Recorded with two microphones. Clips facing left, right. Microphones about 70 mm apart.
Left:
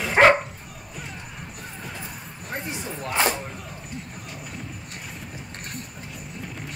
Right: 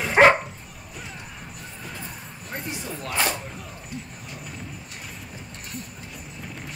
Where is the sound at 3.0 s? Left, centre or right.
Left.